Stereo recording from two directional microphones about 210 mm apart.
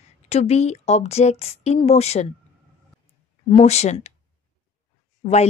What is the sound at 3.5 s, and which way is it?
Speech, 30° left (ahead or behind).